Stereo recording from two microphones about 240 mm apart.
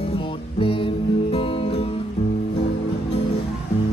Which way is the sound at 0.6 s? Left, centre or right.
Left.